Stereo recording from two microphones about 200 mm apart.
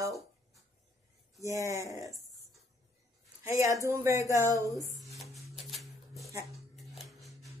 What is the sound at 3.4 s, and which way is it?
Speech, 15° right (ahead or behind).